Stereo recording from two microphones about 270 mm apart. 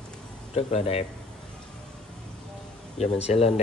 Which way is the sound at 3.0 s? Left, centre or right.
Left.